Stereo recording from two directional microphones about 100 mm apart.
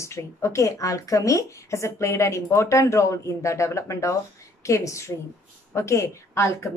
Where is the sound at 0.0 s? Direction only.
30° left (ahead or behind).